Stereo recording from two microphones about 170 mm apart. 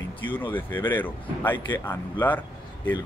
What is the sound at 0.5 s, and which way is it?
Speech, 10° left (ahead or behind).